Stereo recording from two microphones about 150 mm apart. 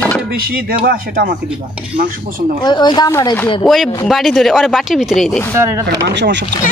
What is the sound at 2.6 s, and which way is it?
Speech, 30° left (ahead or behind).